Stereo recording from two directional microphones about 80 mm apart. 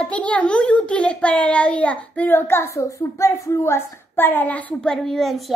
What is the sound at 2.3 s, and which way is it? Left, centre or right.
Speech, left.